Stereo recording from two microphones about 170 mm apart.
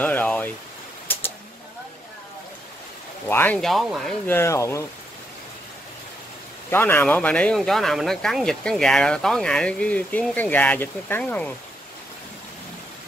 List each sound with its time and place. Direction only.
0.0 s a sound: 10° left (ahead or behind)
3.3 s speech: 10° left (ahead or behind)
4.3 s speech: 15° left (ahead or behind)
6.7 s speech: 10° left (ahead or behind)